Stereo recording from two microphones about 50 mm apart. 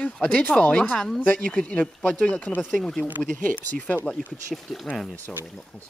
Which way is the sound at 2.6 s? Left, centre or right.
Centre.